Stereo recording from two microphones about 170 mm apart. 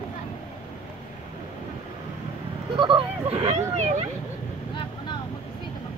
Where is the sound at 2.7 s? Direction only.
30° right (ahead or behind).